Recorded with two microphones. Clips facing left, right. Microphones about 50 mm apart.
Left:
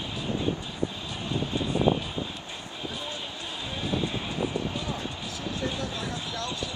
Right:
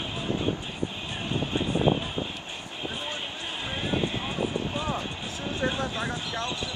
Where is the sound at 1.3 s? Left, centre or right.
Right.